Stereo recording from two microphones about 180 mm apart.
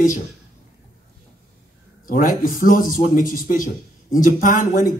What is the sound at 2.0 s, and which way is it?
Speech, 50° left (ahead or behind).